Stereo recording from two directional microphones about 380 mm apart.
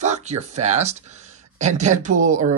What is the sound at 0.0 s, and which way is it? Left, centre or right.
Speech, centre.